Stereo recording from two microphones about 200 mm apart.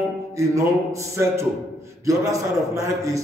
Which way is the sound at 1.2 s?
10° right (ahead or behind).